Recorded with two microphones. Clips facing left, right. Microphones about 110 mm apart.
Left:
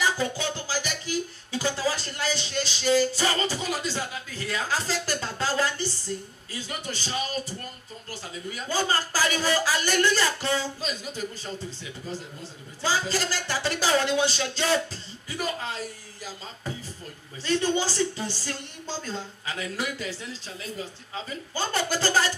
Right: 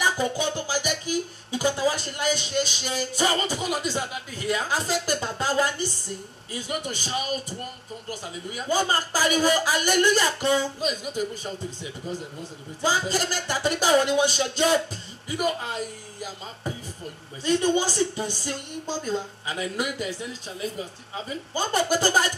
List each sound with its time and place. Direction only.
0.0 s a man's voice: 15° right (ahead or behind)